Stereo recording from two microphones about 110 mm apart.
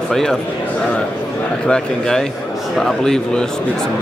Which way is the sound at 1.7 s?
5° left (ahead or behind).